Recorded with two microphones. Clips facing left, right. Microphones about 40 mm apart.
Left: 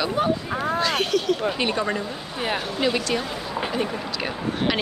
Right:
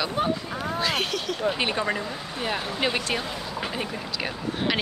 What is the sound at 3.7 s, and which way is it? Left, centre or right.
Speech, centre.